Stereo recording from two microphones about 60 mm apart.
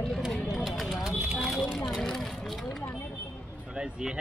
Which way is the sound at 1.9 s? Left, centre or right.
Centre.